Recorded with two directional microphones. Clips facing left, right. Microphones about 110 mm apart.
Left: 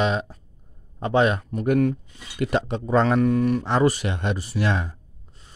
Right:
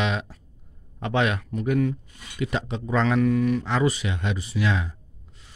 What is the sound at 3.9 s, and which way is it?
Speech, 50° left (ahead or behind).